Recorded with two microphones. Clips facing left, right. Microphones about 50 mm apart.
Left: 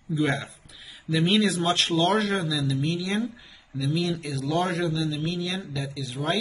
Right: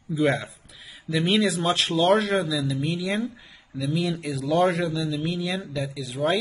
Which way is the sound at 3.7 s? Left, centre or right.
Centre.